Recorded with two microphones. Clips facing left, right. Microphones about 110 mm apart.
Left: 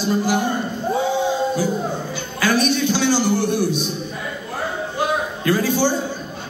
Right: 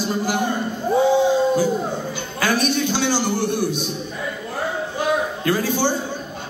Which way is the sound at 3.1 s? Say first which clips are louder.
Left 3 dB; 50° right (ahead or behind).